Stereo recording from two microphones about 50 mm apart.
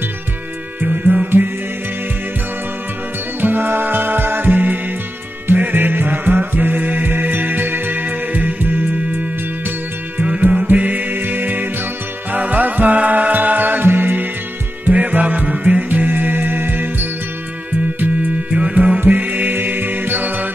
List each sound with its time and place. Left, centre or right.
0.8 s music: right
3.3 s music: right
10.5 s music: right
14.9 s music: right
18.5 s music: right